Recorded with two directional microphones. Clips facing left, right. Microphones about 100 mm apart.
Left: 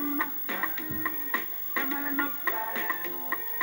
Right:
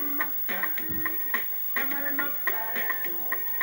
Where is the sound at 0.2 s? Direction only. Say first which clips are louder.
Left 1 dB; 20° left (ahead or behind).